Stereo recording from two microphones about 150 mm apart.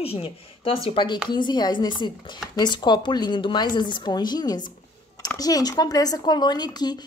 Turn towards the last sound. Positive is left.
turn(degrees=30)  # may be behind; listen again after turning